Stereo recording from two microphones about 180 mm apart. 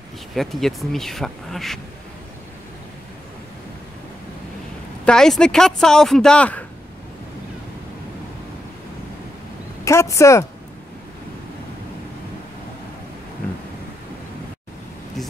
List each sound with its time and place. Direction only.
0.3 s speech: centre (ahead or behind)
5.0 s speech: 5° left (ahead or behind)
9.8 s speech: 15° left (ahead or behind)